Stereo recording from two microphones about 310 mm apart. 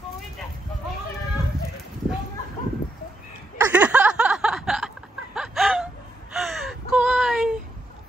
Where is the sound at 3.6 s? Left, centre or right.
Centre.